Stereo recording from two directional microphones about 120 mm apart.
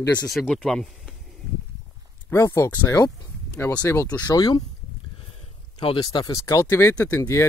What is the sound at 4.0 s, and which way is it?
Speech, 30° left (ahead or behind).